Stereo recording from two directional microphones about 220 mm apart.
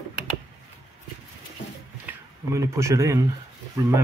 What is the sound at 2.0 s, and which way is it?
Speech, 15° right (ahead or behind).